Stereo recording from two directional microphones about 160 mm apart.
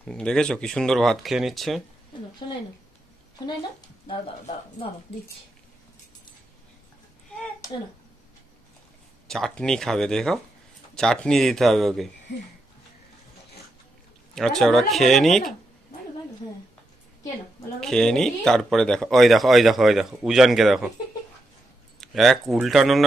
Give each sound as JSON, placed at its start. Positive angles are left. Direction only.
{"t": 0.0, "sound": "speech", "side_deg": 5}
{"t": 9.3, "sound": "speech", "side_deg": 5}
{"t": 14.3, "sound": "speech", "side_deg": 0}
{"t": 17.7, "sound": "speech", "side_deg": 5}
{"t": 22.0, "sound": "speech", "side_deg": 0}